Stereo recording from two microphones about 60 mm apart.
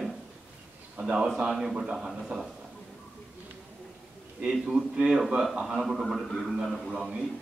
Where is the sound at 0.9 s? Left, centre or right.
Centre.